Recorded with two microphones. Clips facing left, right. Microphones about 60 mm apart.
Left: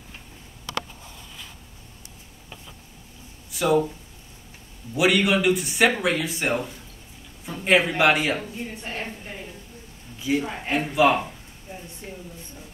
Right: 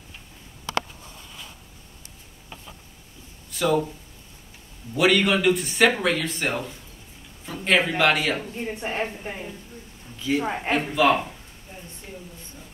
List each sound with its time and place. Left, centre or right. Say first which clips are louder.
3.5 s speech: left 2 dB; centre
4.9 s speech: even; centre
8.5 s a woman's voice: right 5 dB; right
10.7 s speech: left 1 dB; centre